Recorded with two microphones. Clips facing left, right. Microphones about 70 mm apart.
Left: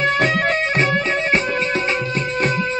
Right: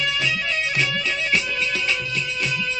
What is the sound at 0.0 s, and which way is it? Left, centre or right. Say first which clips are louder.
Music: left 7 dB; left.